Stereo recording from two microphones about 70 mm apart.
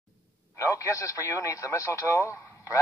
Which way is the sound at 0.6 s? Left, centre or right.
Left.